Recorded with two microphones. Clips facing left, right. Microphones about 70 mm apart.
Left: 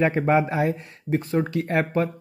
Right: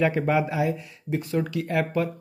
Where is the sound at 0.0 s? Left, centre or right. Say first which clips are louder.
Left 2 dB; left.